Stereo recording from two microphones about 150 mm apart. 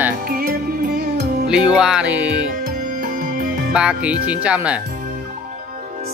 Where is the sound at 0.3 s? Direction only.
80° right.